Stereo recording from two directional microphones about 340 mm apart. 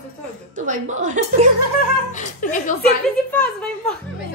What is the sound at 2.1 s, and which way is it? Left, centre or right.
Speech, left.